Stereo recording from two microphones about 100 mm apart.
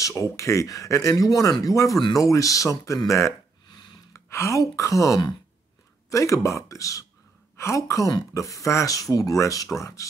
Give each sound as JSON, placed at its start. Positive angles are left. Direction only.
{"t": 0.0, "sound": "speech", "side_deg": 30}